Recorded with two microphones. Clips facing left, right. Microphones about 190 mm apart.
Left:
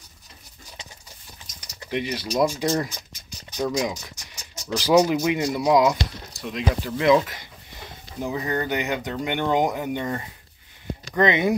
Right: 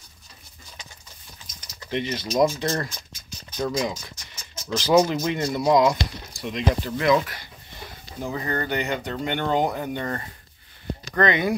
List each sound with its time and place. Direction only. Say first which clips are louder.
1.9 s speech: even; 10° left (ahead or behind)
7.0 s a sound: left 4 dB; 20° left (ahead or behind)
8.5 s speech: even; 10° left (ahead or behind)
11.1 s speech: left 2 dB; 20° left (ahead or behind)